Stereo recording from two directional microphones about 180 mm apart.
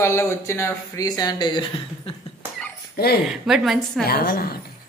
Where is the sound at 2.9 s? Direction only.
60° left (ahead or behind).